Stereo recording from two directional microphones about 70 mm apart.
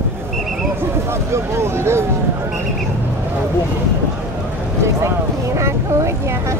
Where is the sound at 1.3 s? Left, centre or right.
Right.